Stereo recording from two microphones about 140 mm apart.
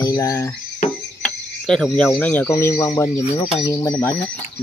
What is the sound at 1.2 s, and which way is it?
Speech, 5° left (ahead or behind).